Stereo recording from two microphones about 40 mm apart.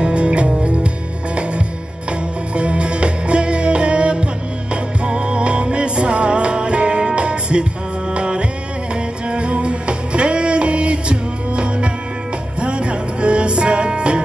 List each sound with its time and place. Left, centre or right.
0.0 s music: right
2.5 s music: right